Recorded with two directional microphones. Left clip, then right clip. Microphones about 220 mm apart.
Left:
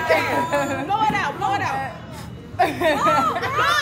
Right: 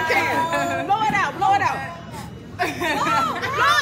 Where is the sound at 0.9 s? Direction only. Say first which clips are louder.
Even; 30° right (ahead or behind).